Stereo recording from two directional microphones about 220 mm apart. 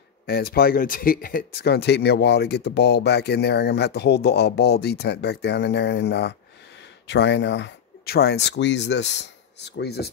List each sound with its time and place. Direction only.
0.3 s speech: 45° left (ahead or behind)